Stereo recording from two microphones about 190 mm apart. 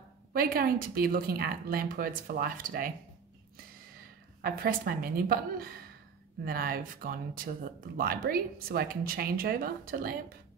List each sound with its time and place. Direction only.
0.3 s speech: 50° right (ahead or behind)
4.4 s speech: 50° right (ahead or behind)